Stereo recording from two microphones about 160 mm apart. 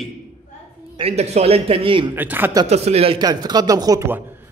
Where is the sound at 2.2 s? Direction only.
10° right (ahead or behind).